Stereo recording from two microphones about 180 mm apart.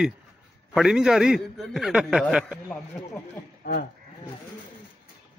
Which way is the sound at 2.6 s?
15° left (ahead or behind).